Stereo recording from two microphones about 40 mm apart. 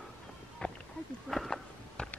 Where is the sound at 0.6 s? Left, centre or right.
Left.